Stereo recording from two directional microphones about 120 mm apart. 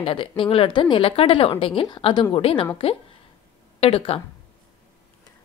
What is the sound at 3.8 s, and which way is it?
Speech, 55° left (ahead or behind).